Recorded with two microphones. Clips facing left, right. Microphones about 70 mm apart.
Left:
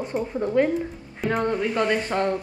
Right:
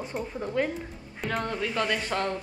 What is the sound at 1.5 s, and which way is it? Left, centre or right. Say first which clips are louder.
Speech: left 6 dB; centre.